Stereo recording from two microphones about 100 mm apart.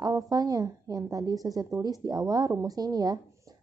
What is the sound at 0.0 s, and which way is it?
Speech, 40° right (ahead or behind).